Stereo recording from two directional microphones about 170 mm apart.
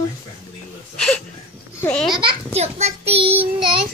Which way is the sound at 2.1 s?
30° right (ahead or behind).